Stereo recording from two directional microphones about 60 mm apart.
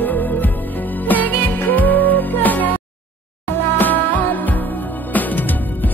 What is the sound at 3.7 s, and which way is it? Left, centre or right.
Music, left.